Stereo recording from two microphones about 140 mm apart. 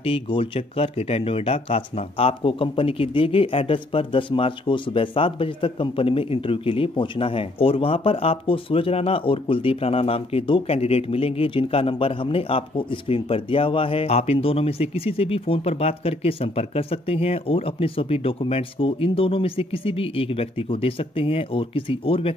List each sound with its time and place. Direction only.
0.0 s speech: 40° left (ahead or behind)